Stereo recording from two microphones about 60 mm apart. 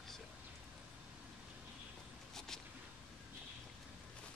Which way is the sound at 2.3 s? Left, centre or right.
Centre.